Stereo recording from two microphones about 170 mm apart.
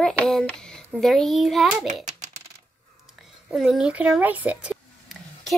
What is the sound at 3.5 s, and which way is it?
A child's voice, 5° right (ahead or behind).